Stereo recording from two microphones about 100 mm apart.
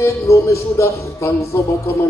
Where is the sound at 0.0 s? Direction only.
30° left (ahead or behind).